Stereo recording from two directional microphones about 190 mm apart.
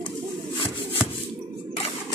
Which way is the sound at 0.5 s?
25° left (ahead or behind).